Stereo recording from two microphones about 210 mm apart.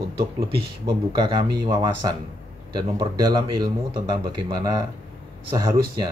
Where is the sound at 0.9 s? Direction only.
20° right (ahead or behind).